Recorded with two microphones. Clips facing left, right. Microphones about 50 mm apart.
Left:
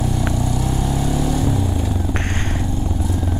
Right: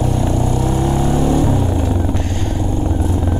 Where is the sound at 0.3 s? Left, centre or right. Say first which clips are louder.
Right 4 dB; right.